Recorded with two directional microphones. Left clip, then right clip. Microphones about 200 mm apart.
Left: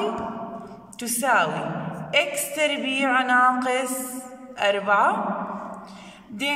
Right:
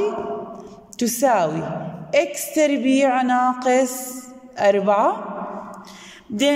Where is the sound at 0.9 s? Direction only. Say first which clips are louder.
Right 3 dB; 20° right (ahead or behind).